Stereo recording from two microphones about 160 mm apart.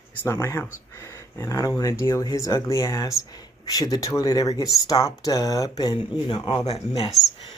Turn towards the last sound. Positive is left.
turn(degrees=40)  # may be behind; listen again after turning